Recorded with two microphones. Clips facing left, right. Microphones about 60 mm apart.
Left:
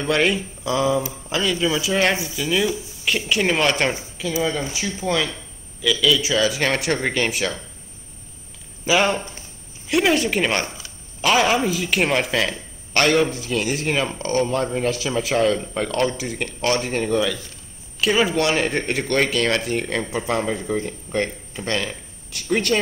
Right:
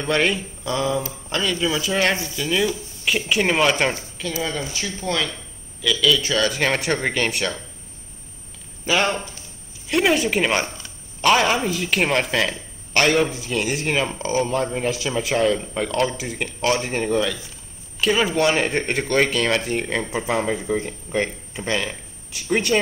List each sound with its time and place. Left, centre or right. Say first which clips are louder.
0.0 s speech: left 1 dB; centre
4.4 s speech: left 3 dB; centre
8.8 s speech: left 2 dB; centre